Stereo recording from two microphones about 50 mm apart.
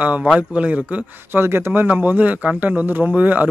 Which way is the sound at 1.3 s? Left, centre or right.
Right.